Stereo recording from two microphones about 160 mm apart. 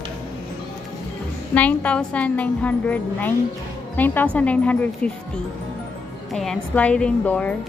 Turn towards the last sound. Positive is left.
turn(degrees=10)  # may be behind; listen again after turning